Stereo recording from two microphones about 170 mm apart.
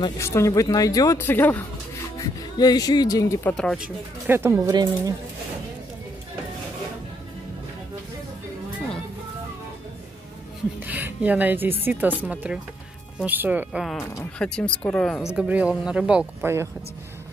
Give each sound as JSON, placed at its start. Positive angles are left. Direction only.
{"t": 0.0, "sound": "speech", "side_deg": 15}
{"t": 2.1, "sound": "speech", "side_deg": 20}
{"t": 3.5, "sound": "speech", "side_deg": 0}
{"t": 10.8, "sound": "music", "side_deg": -10}
{"t": 11.8, "sound": "speech", "side_deg": -10}
{"t": 13.9, "sound": "speech", "side_deg": 15}
{"t": 15.3, "sound": "speech", "side_deg": -5}